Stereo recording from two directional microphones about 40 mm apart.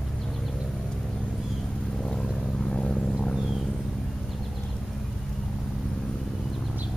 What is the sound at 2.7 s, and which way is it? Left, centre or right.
Vehicle, left.